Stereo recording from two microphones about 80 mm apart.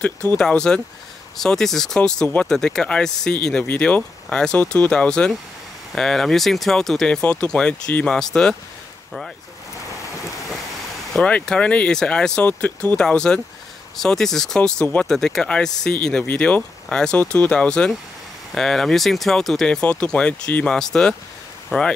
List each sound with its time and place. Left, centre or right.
0.0 s speech: left
0.4 s speech: centre
11.1 s speech: centre